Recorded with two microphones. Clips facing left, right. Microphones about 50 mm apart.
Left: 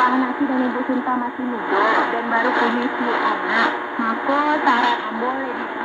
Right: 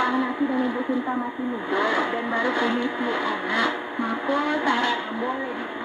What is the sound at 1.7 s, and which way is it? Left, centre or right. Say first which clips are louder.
Speech: left 6 dB; left.